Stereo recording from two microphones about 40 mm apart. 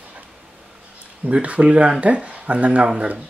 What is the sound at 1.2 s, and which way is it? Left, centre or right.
Speech, right.